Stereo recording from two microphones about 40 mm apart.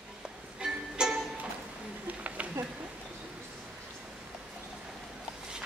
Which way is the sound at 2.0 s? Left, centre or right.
Right.